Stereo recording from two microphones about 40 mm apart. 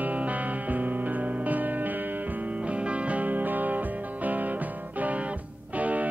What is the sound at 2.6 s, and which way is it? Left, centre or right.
Music, right.